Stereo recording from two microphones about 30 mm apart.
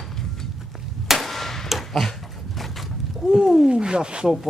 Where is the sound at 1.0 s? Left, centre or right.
Centre.